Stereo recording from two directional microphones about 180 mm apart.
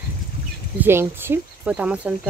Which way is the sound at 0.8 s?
10° right (ahead or behind).